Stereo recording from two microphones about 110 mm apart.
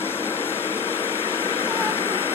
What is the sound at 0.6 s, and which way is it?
Vehicle, 20° left (ahead or behind).